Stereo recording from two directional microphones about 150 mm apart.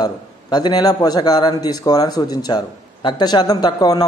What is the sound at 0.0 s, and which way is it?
A man's voice, 30° left (ahead or behind).